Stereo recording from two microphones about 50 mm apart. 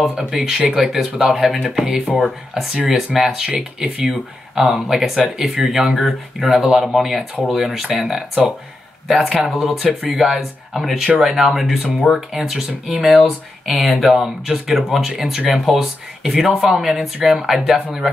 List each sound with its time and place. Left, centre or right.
0.3 s speech: centre
4.1 s speech: centre